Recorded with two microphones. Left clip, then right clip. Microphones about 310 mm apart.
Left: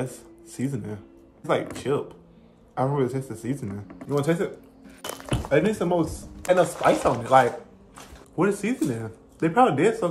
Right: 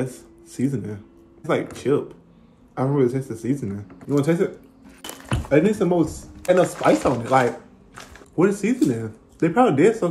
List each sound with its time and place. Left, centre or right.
0.6 s speech: centre
5.5 s speech: centre